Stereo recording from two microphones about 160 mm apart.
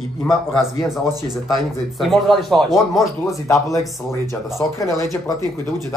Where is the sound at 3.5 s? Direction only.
20° left (ahead or behind).